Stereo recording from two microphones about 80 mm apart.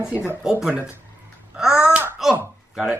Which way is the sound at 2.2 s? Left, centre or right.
Centre.